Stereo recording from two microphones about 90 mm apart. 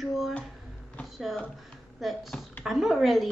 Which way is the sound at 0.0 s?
Centre (ahead or behind).